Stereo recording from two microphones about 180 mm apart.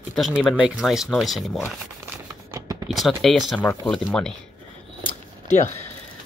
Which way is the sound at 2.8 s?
Centre (ahead or behind).